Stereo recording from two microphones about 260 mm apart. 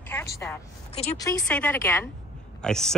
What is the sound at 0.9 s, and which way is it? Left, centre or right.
Speech, left.